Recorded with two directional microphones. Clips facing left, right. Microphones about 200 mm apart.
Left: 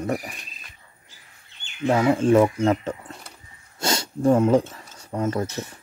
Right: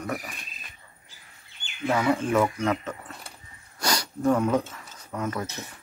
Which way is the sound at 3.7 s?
25° left (ahead or behind).